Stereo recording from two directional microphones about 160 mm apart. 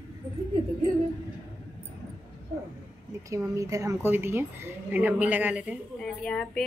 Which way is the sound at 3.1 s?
20° right (ahead or behind).